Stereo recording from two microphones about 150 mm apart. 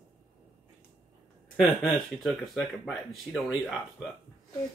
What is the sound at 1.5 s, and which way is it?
Speech, centre (ahead or behind).